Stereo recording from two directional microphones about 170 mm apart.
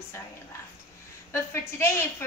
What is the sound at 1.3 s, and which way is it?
Speech, 15° left (ahead or behind).